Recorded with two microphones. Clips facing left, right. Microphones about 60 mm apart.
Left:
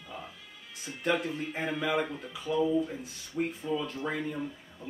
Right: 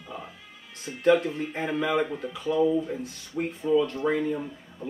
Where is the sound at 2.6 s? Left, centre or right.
Centre.